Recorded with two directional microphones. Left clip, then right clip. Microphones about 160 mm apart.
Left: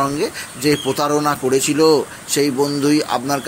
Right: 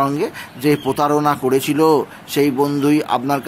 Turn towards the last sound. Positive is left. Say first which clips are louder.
# right 1 dB
turn(degrees=-15)  # may be behind; listen again after turning